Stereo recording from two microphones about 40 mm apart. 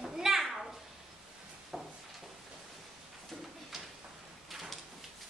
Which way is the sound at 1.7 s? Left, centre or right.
Centre.